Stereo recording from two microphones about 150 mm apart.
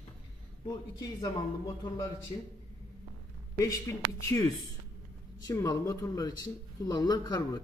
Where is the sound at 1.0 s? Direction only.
30° left (ahead or behind).